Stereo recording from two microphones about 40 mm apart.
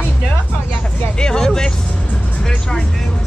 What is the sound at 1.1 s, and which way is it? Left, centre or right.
Vehicle, centre.